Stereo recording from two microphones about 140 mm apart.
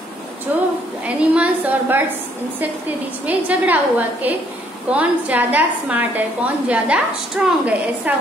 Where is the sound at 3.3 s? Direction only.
10° right (ahead or behind).